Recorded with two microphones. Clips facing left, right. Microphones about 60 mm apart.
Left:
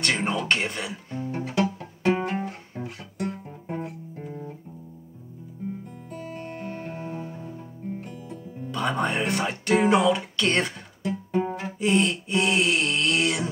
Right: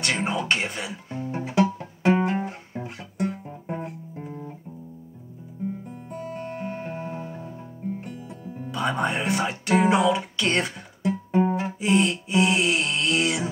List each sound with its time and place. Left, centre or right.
0.0 s speech: centre
1.3 s music: centre
2.3 s guitar: centre
6.5 s music: centre
8.7 s speech: centre
11.0 s music: centre
11.8 s a sound: centre